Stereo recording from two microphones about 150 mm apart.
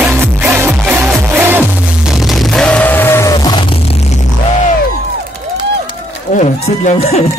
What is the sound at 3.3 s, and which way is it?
Music, 30° left (ahead or behind).